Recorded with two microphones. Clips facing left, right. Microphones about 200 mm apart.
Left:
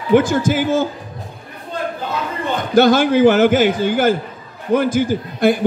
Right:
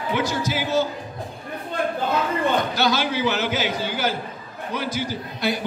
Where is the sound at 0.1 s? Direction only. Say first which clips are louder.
Left 11 dB; 50° left (ahead or behind).